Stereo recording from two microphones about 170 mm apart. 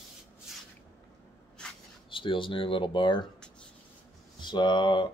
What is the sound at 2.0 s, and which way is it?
Speech, 30° left (ahead or behind).